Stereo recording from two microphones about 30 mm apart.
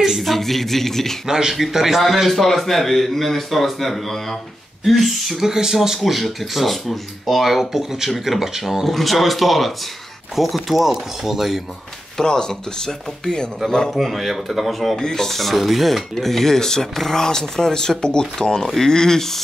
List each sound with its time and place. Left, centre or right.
0.2 s a man's voice: centre
1.2 s speech: centre
2.2 s a man's voice: centre
5.4 s speech: centre
6.0 s speech: centre
8.8 s speech: centre
12.2 s speech: left
13.9 s speech: centre
15.0 s speech: centre
15.3 s a man's voice: centre